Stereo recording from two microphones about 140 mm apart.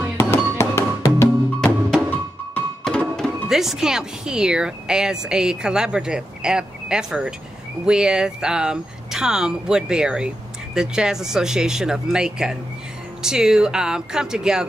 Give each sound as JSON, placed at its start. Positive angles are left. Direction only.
{"t": 0.2, "sound": "music", "side_deg": 20}
{"t": 2.5, "sound": "music", "side_deg": 5}
{"t": 3.2, "sound": "speech", "side_deg": 0}